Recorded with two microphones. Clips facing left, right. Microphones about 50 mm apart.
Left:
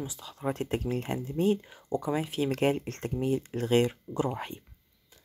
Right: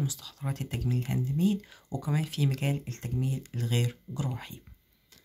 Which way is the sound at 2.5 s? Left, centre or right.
Left.